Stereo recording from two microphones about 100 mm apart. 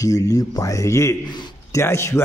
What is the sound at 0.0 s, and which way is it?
A man's voice, 35° left (ahead or behind).